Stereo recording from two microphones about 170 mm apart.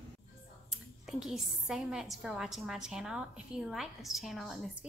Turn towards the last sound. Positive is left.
turn(degrees=0)  # may be behind; listen again after turning